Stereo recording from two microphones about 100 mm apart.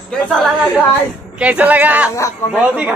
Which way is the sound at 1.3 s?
15° right (ahead or behind).